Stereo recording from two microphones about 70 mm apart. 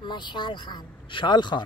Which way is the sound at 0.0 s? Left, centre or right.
Left.